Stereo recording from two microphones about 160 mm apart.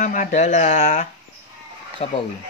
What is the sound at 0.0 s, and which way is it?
Speech, 50° left (ahead or behind).